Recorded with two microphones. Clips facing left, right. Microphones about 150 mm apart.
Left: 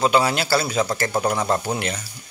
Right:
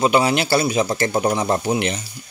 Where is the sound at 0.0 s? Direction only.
20° right (ahead or behind).